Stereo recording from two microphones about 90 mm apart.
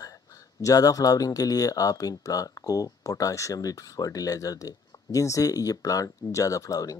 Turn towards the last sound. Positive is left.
turn(degrees=40)  # may be behind; listen again after turning